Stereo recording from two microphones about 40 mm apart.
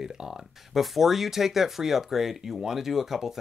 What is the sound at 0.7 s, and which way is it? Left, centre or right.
Speech, centre.